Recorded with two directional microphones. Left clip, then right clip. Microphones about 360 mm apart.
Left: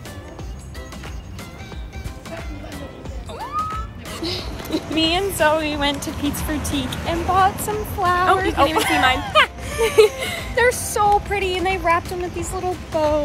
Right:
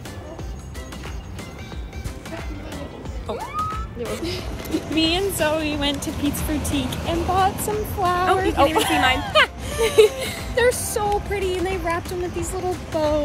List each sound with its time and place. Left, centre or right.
4.2 s music: centre
4.7 s speech: centre